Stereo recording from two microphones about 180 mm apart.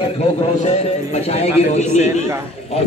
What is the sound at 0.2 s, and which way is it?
A man's voice, 35° left (ahead or behind).